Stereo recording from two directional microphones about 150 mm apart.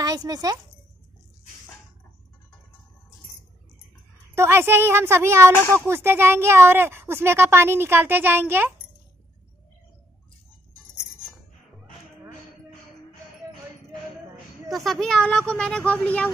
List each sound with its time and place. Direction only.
0.0 s speech: 25° right (ahead or behind)
4.4 s a woman's voice: 15° right (ahead or behind)
14.7 s speech: centre (ahead or behind)